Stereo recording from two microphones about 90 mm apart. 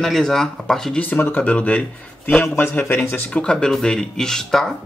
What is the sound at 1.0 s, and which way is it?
Speech, 20° left (ahead or behind).